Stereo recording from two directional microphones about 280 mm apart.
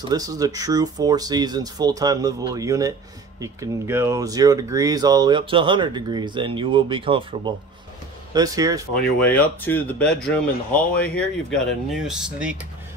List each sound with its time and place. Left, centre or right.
0.1 s speech: centre
9.2 s speech: centre